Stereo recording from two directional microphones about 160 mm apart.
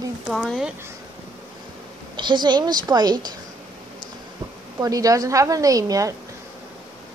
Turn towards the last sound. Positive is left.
turn(degrees=-20)  # may be behind; listen again after turning